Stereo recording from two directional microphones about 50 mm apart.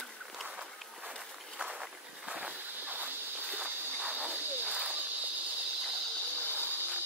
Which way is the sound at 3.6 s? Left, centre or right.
Right.